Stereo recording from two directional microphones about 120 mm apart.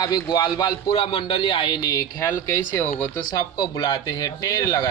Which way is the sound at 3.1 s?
30° left (ahead or behind).